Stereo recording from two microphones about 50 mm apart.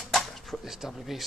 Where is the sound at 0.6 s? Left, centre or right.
Centre.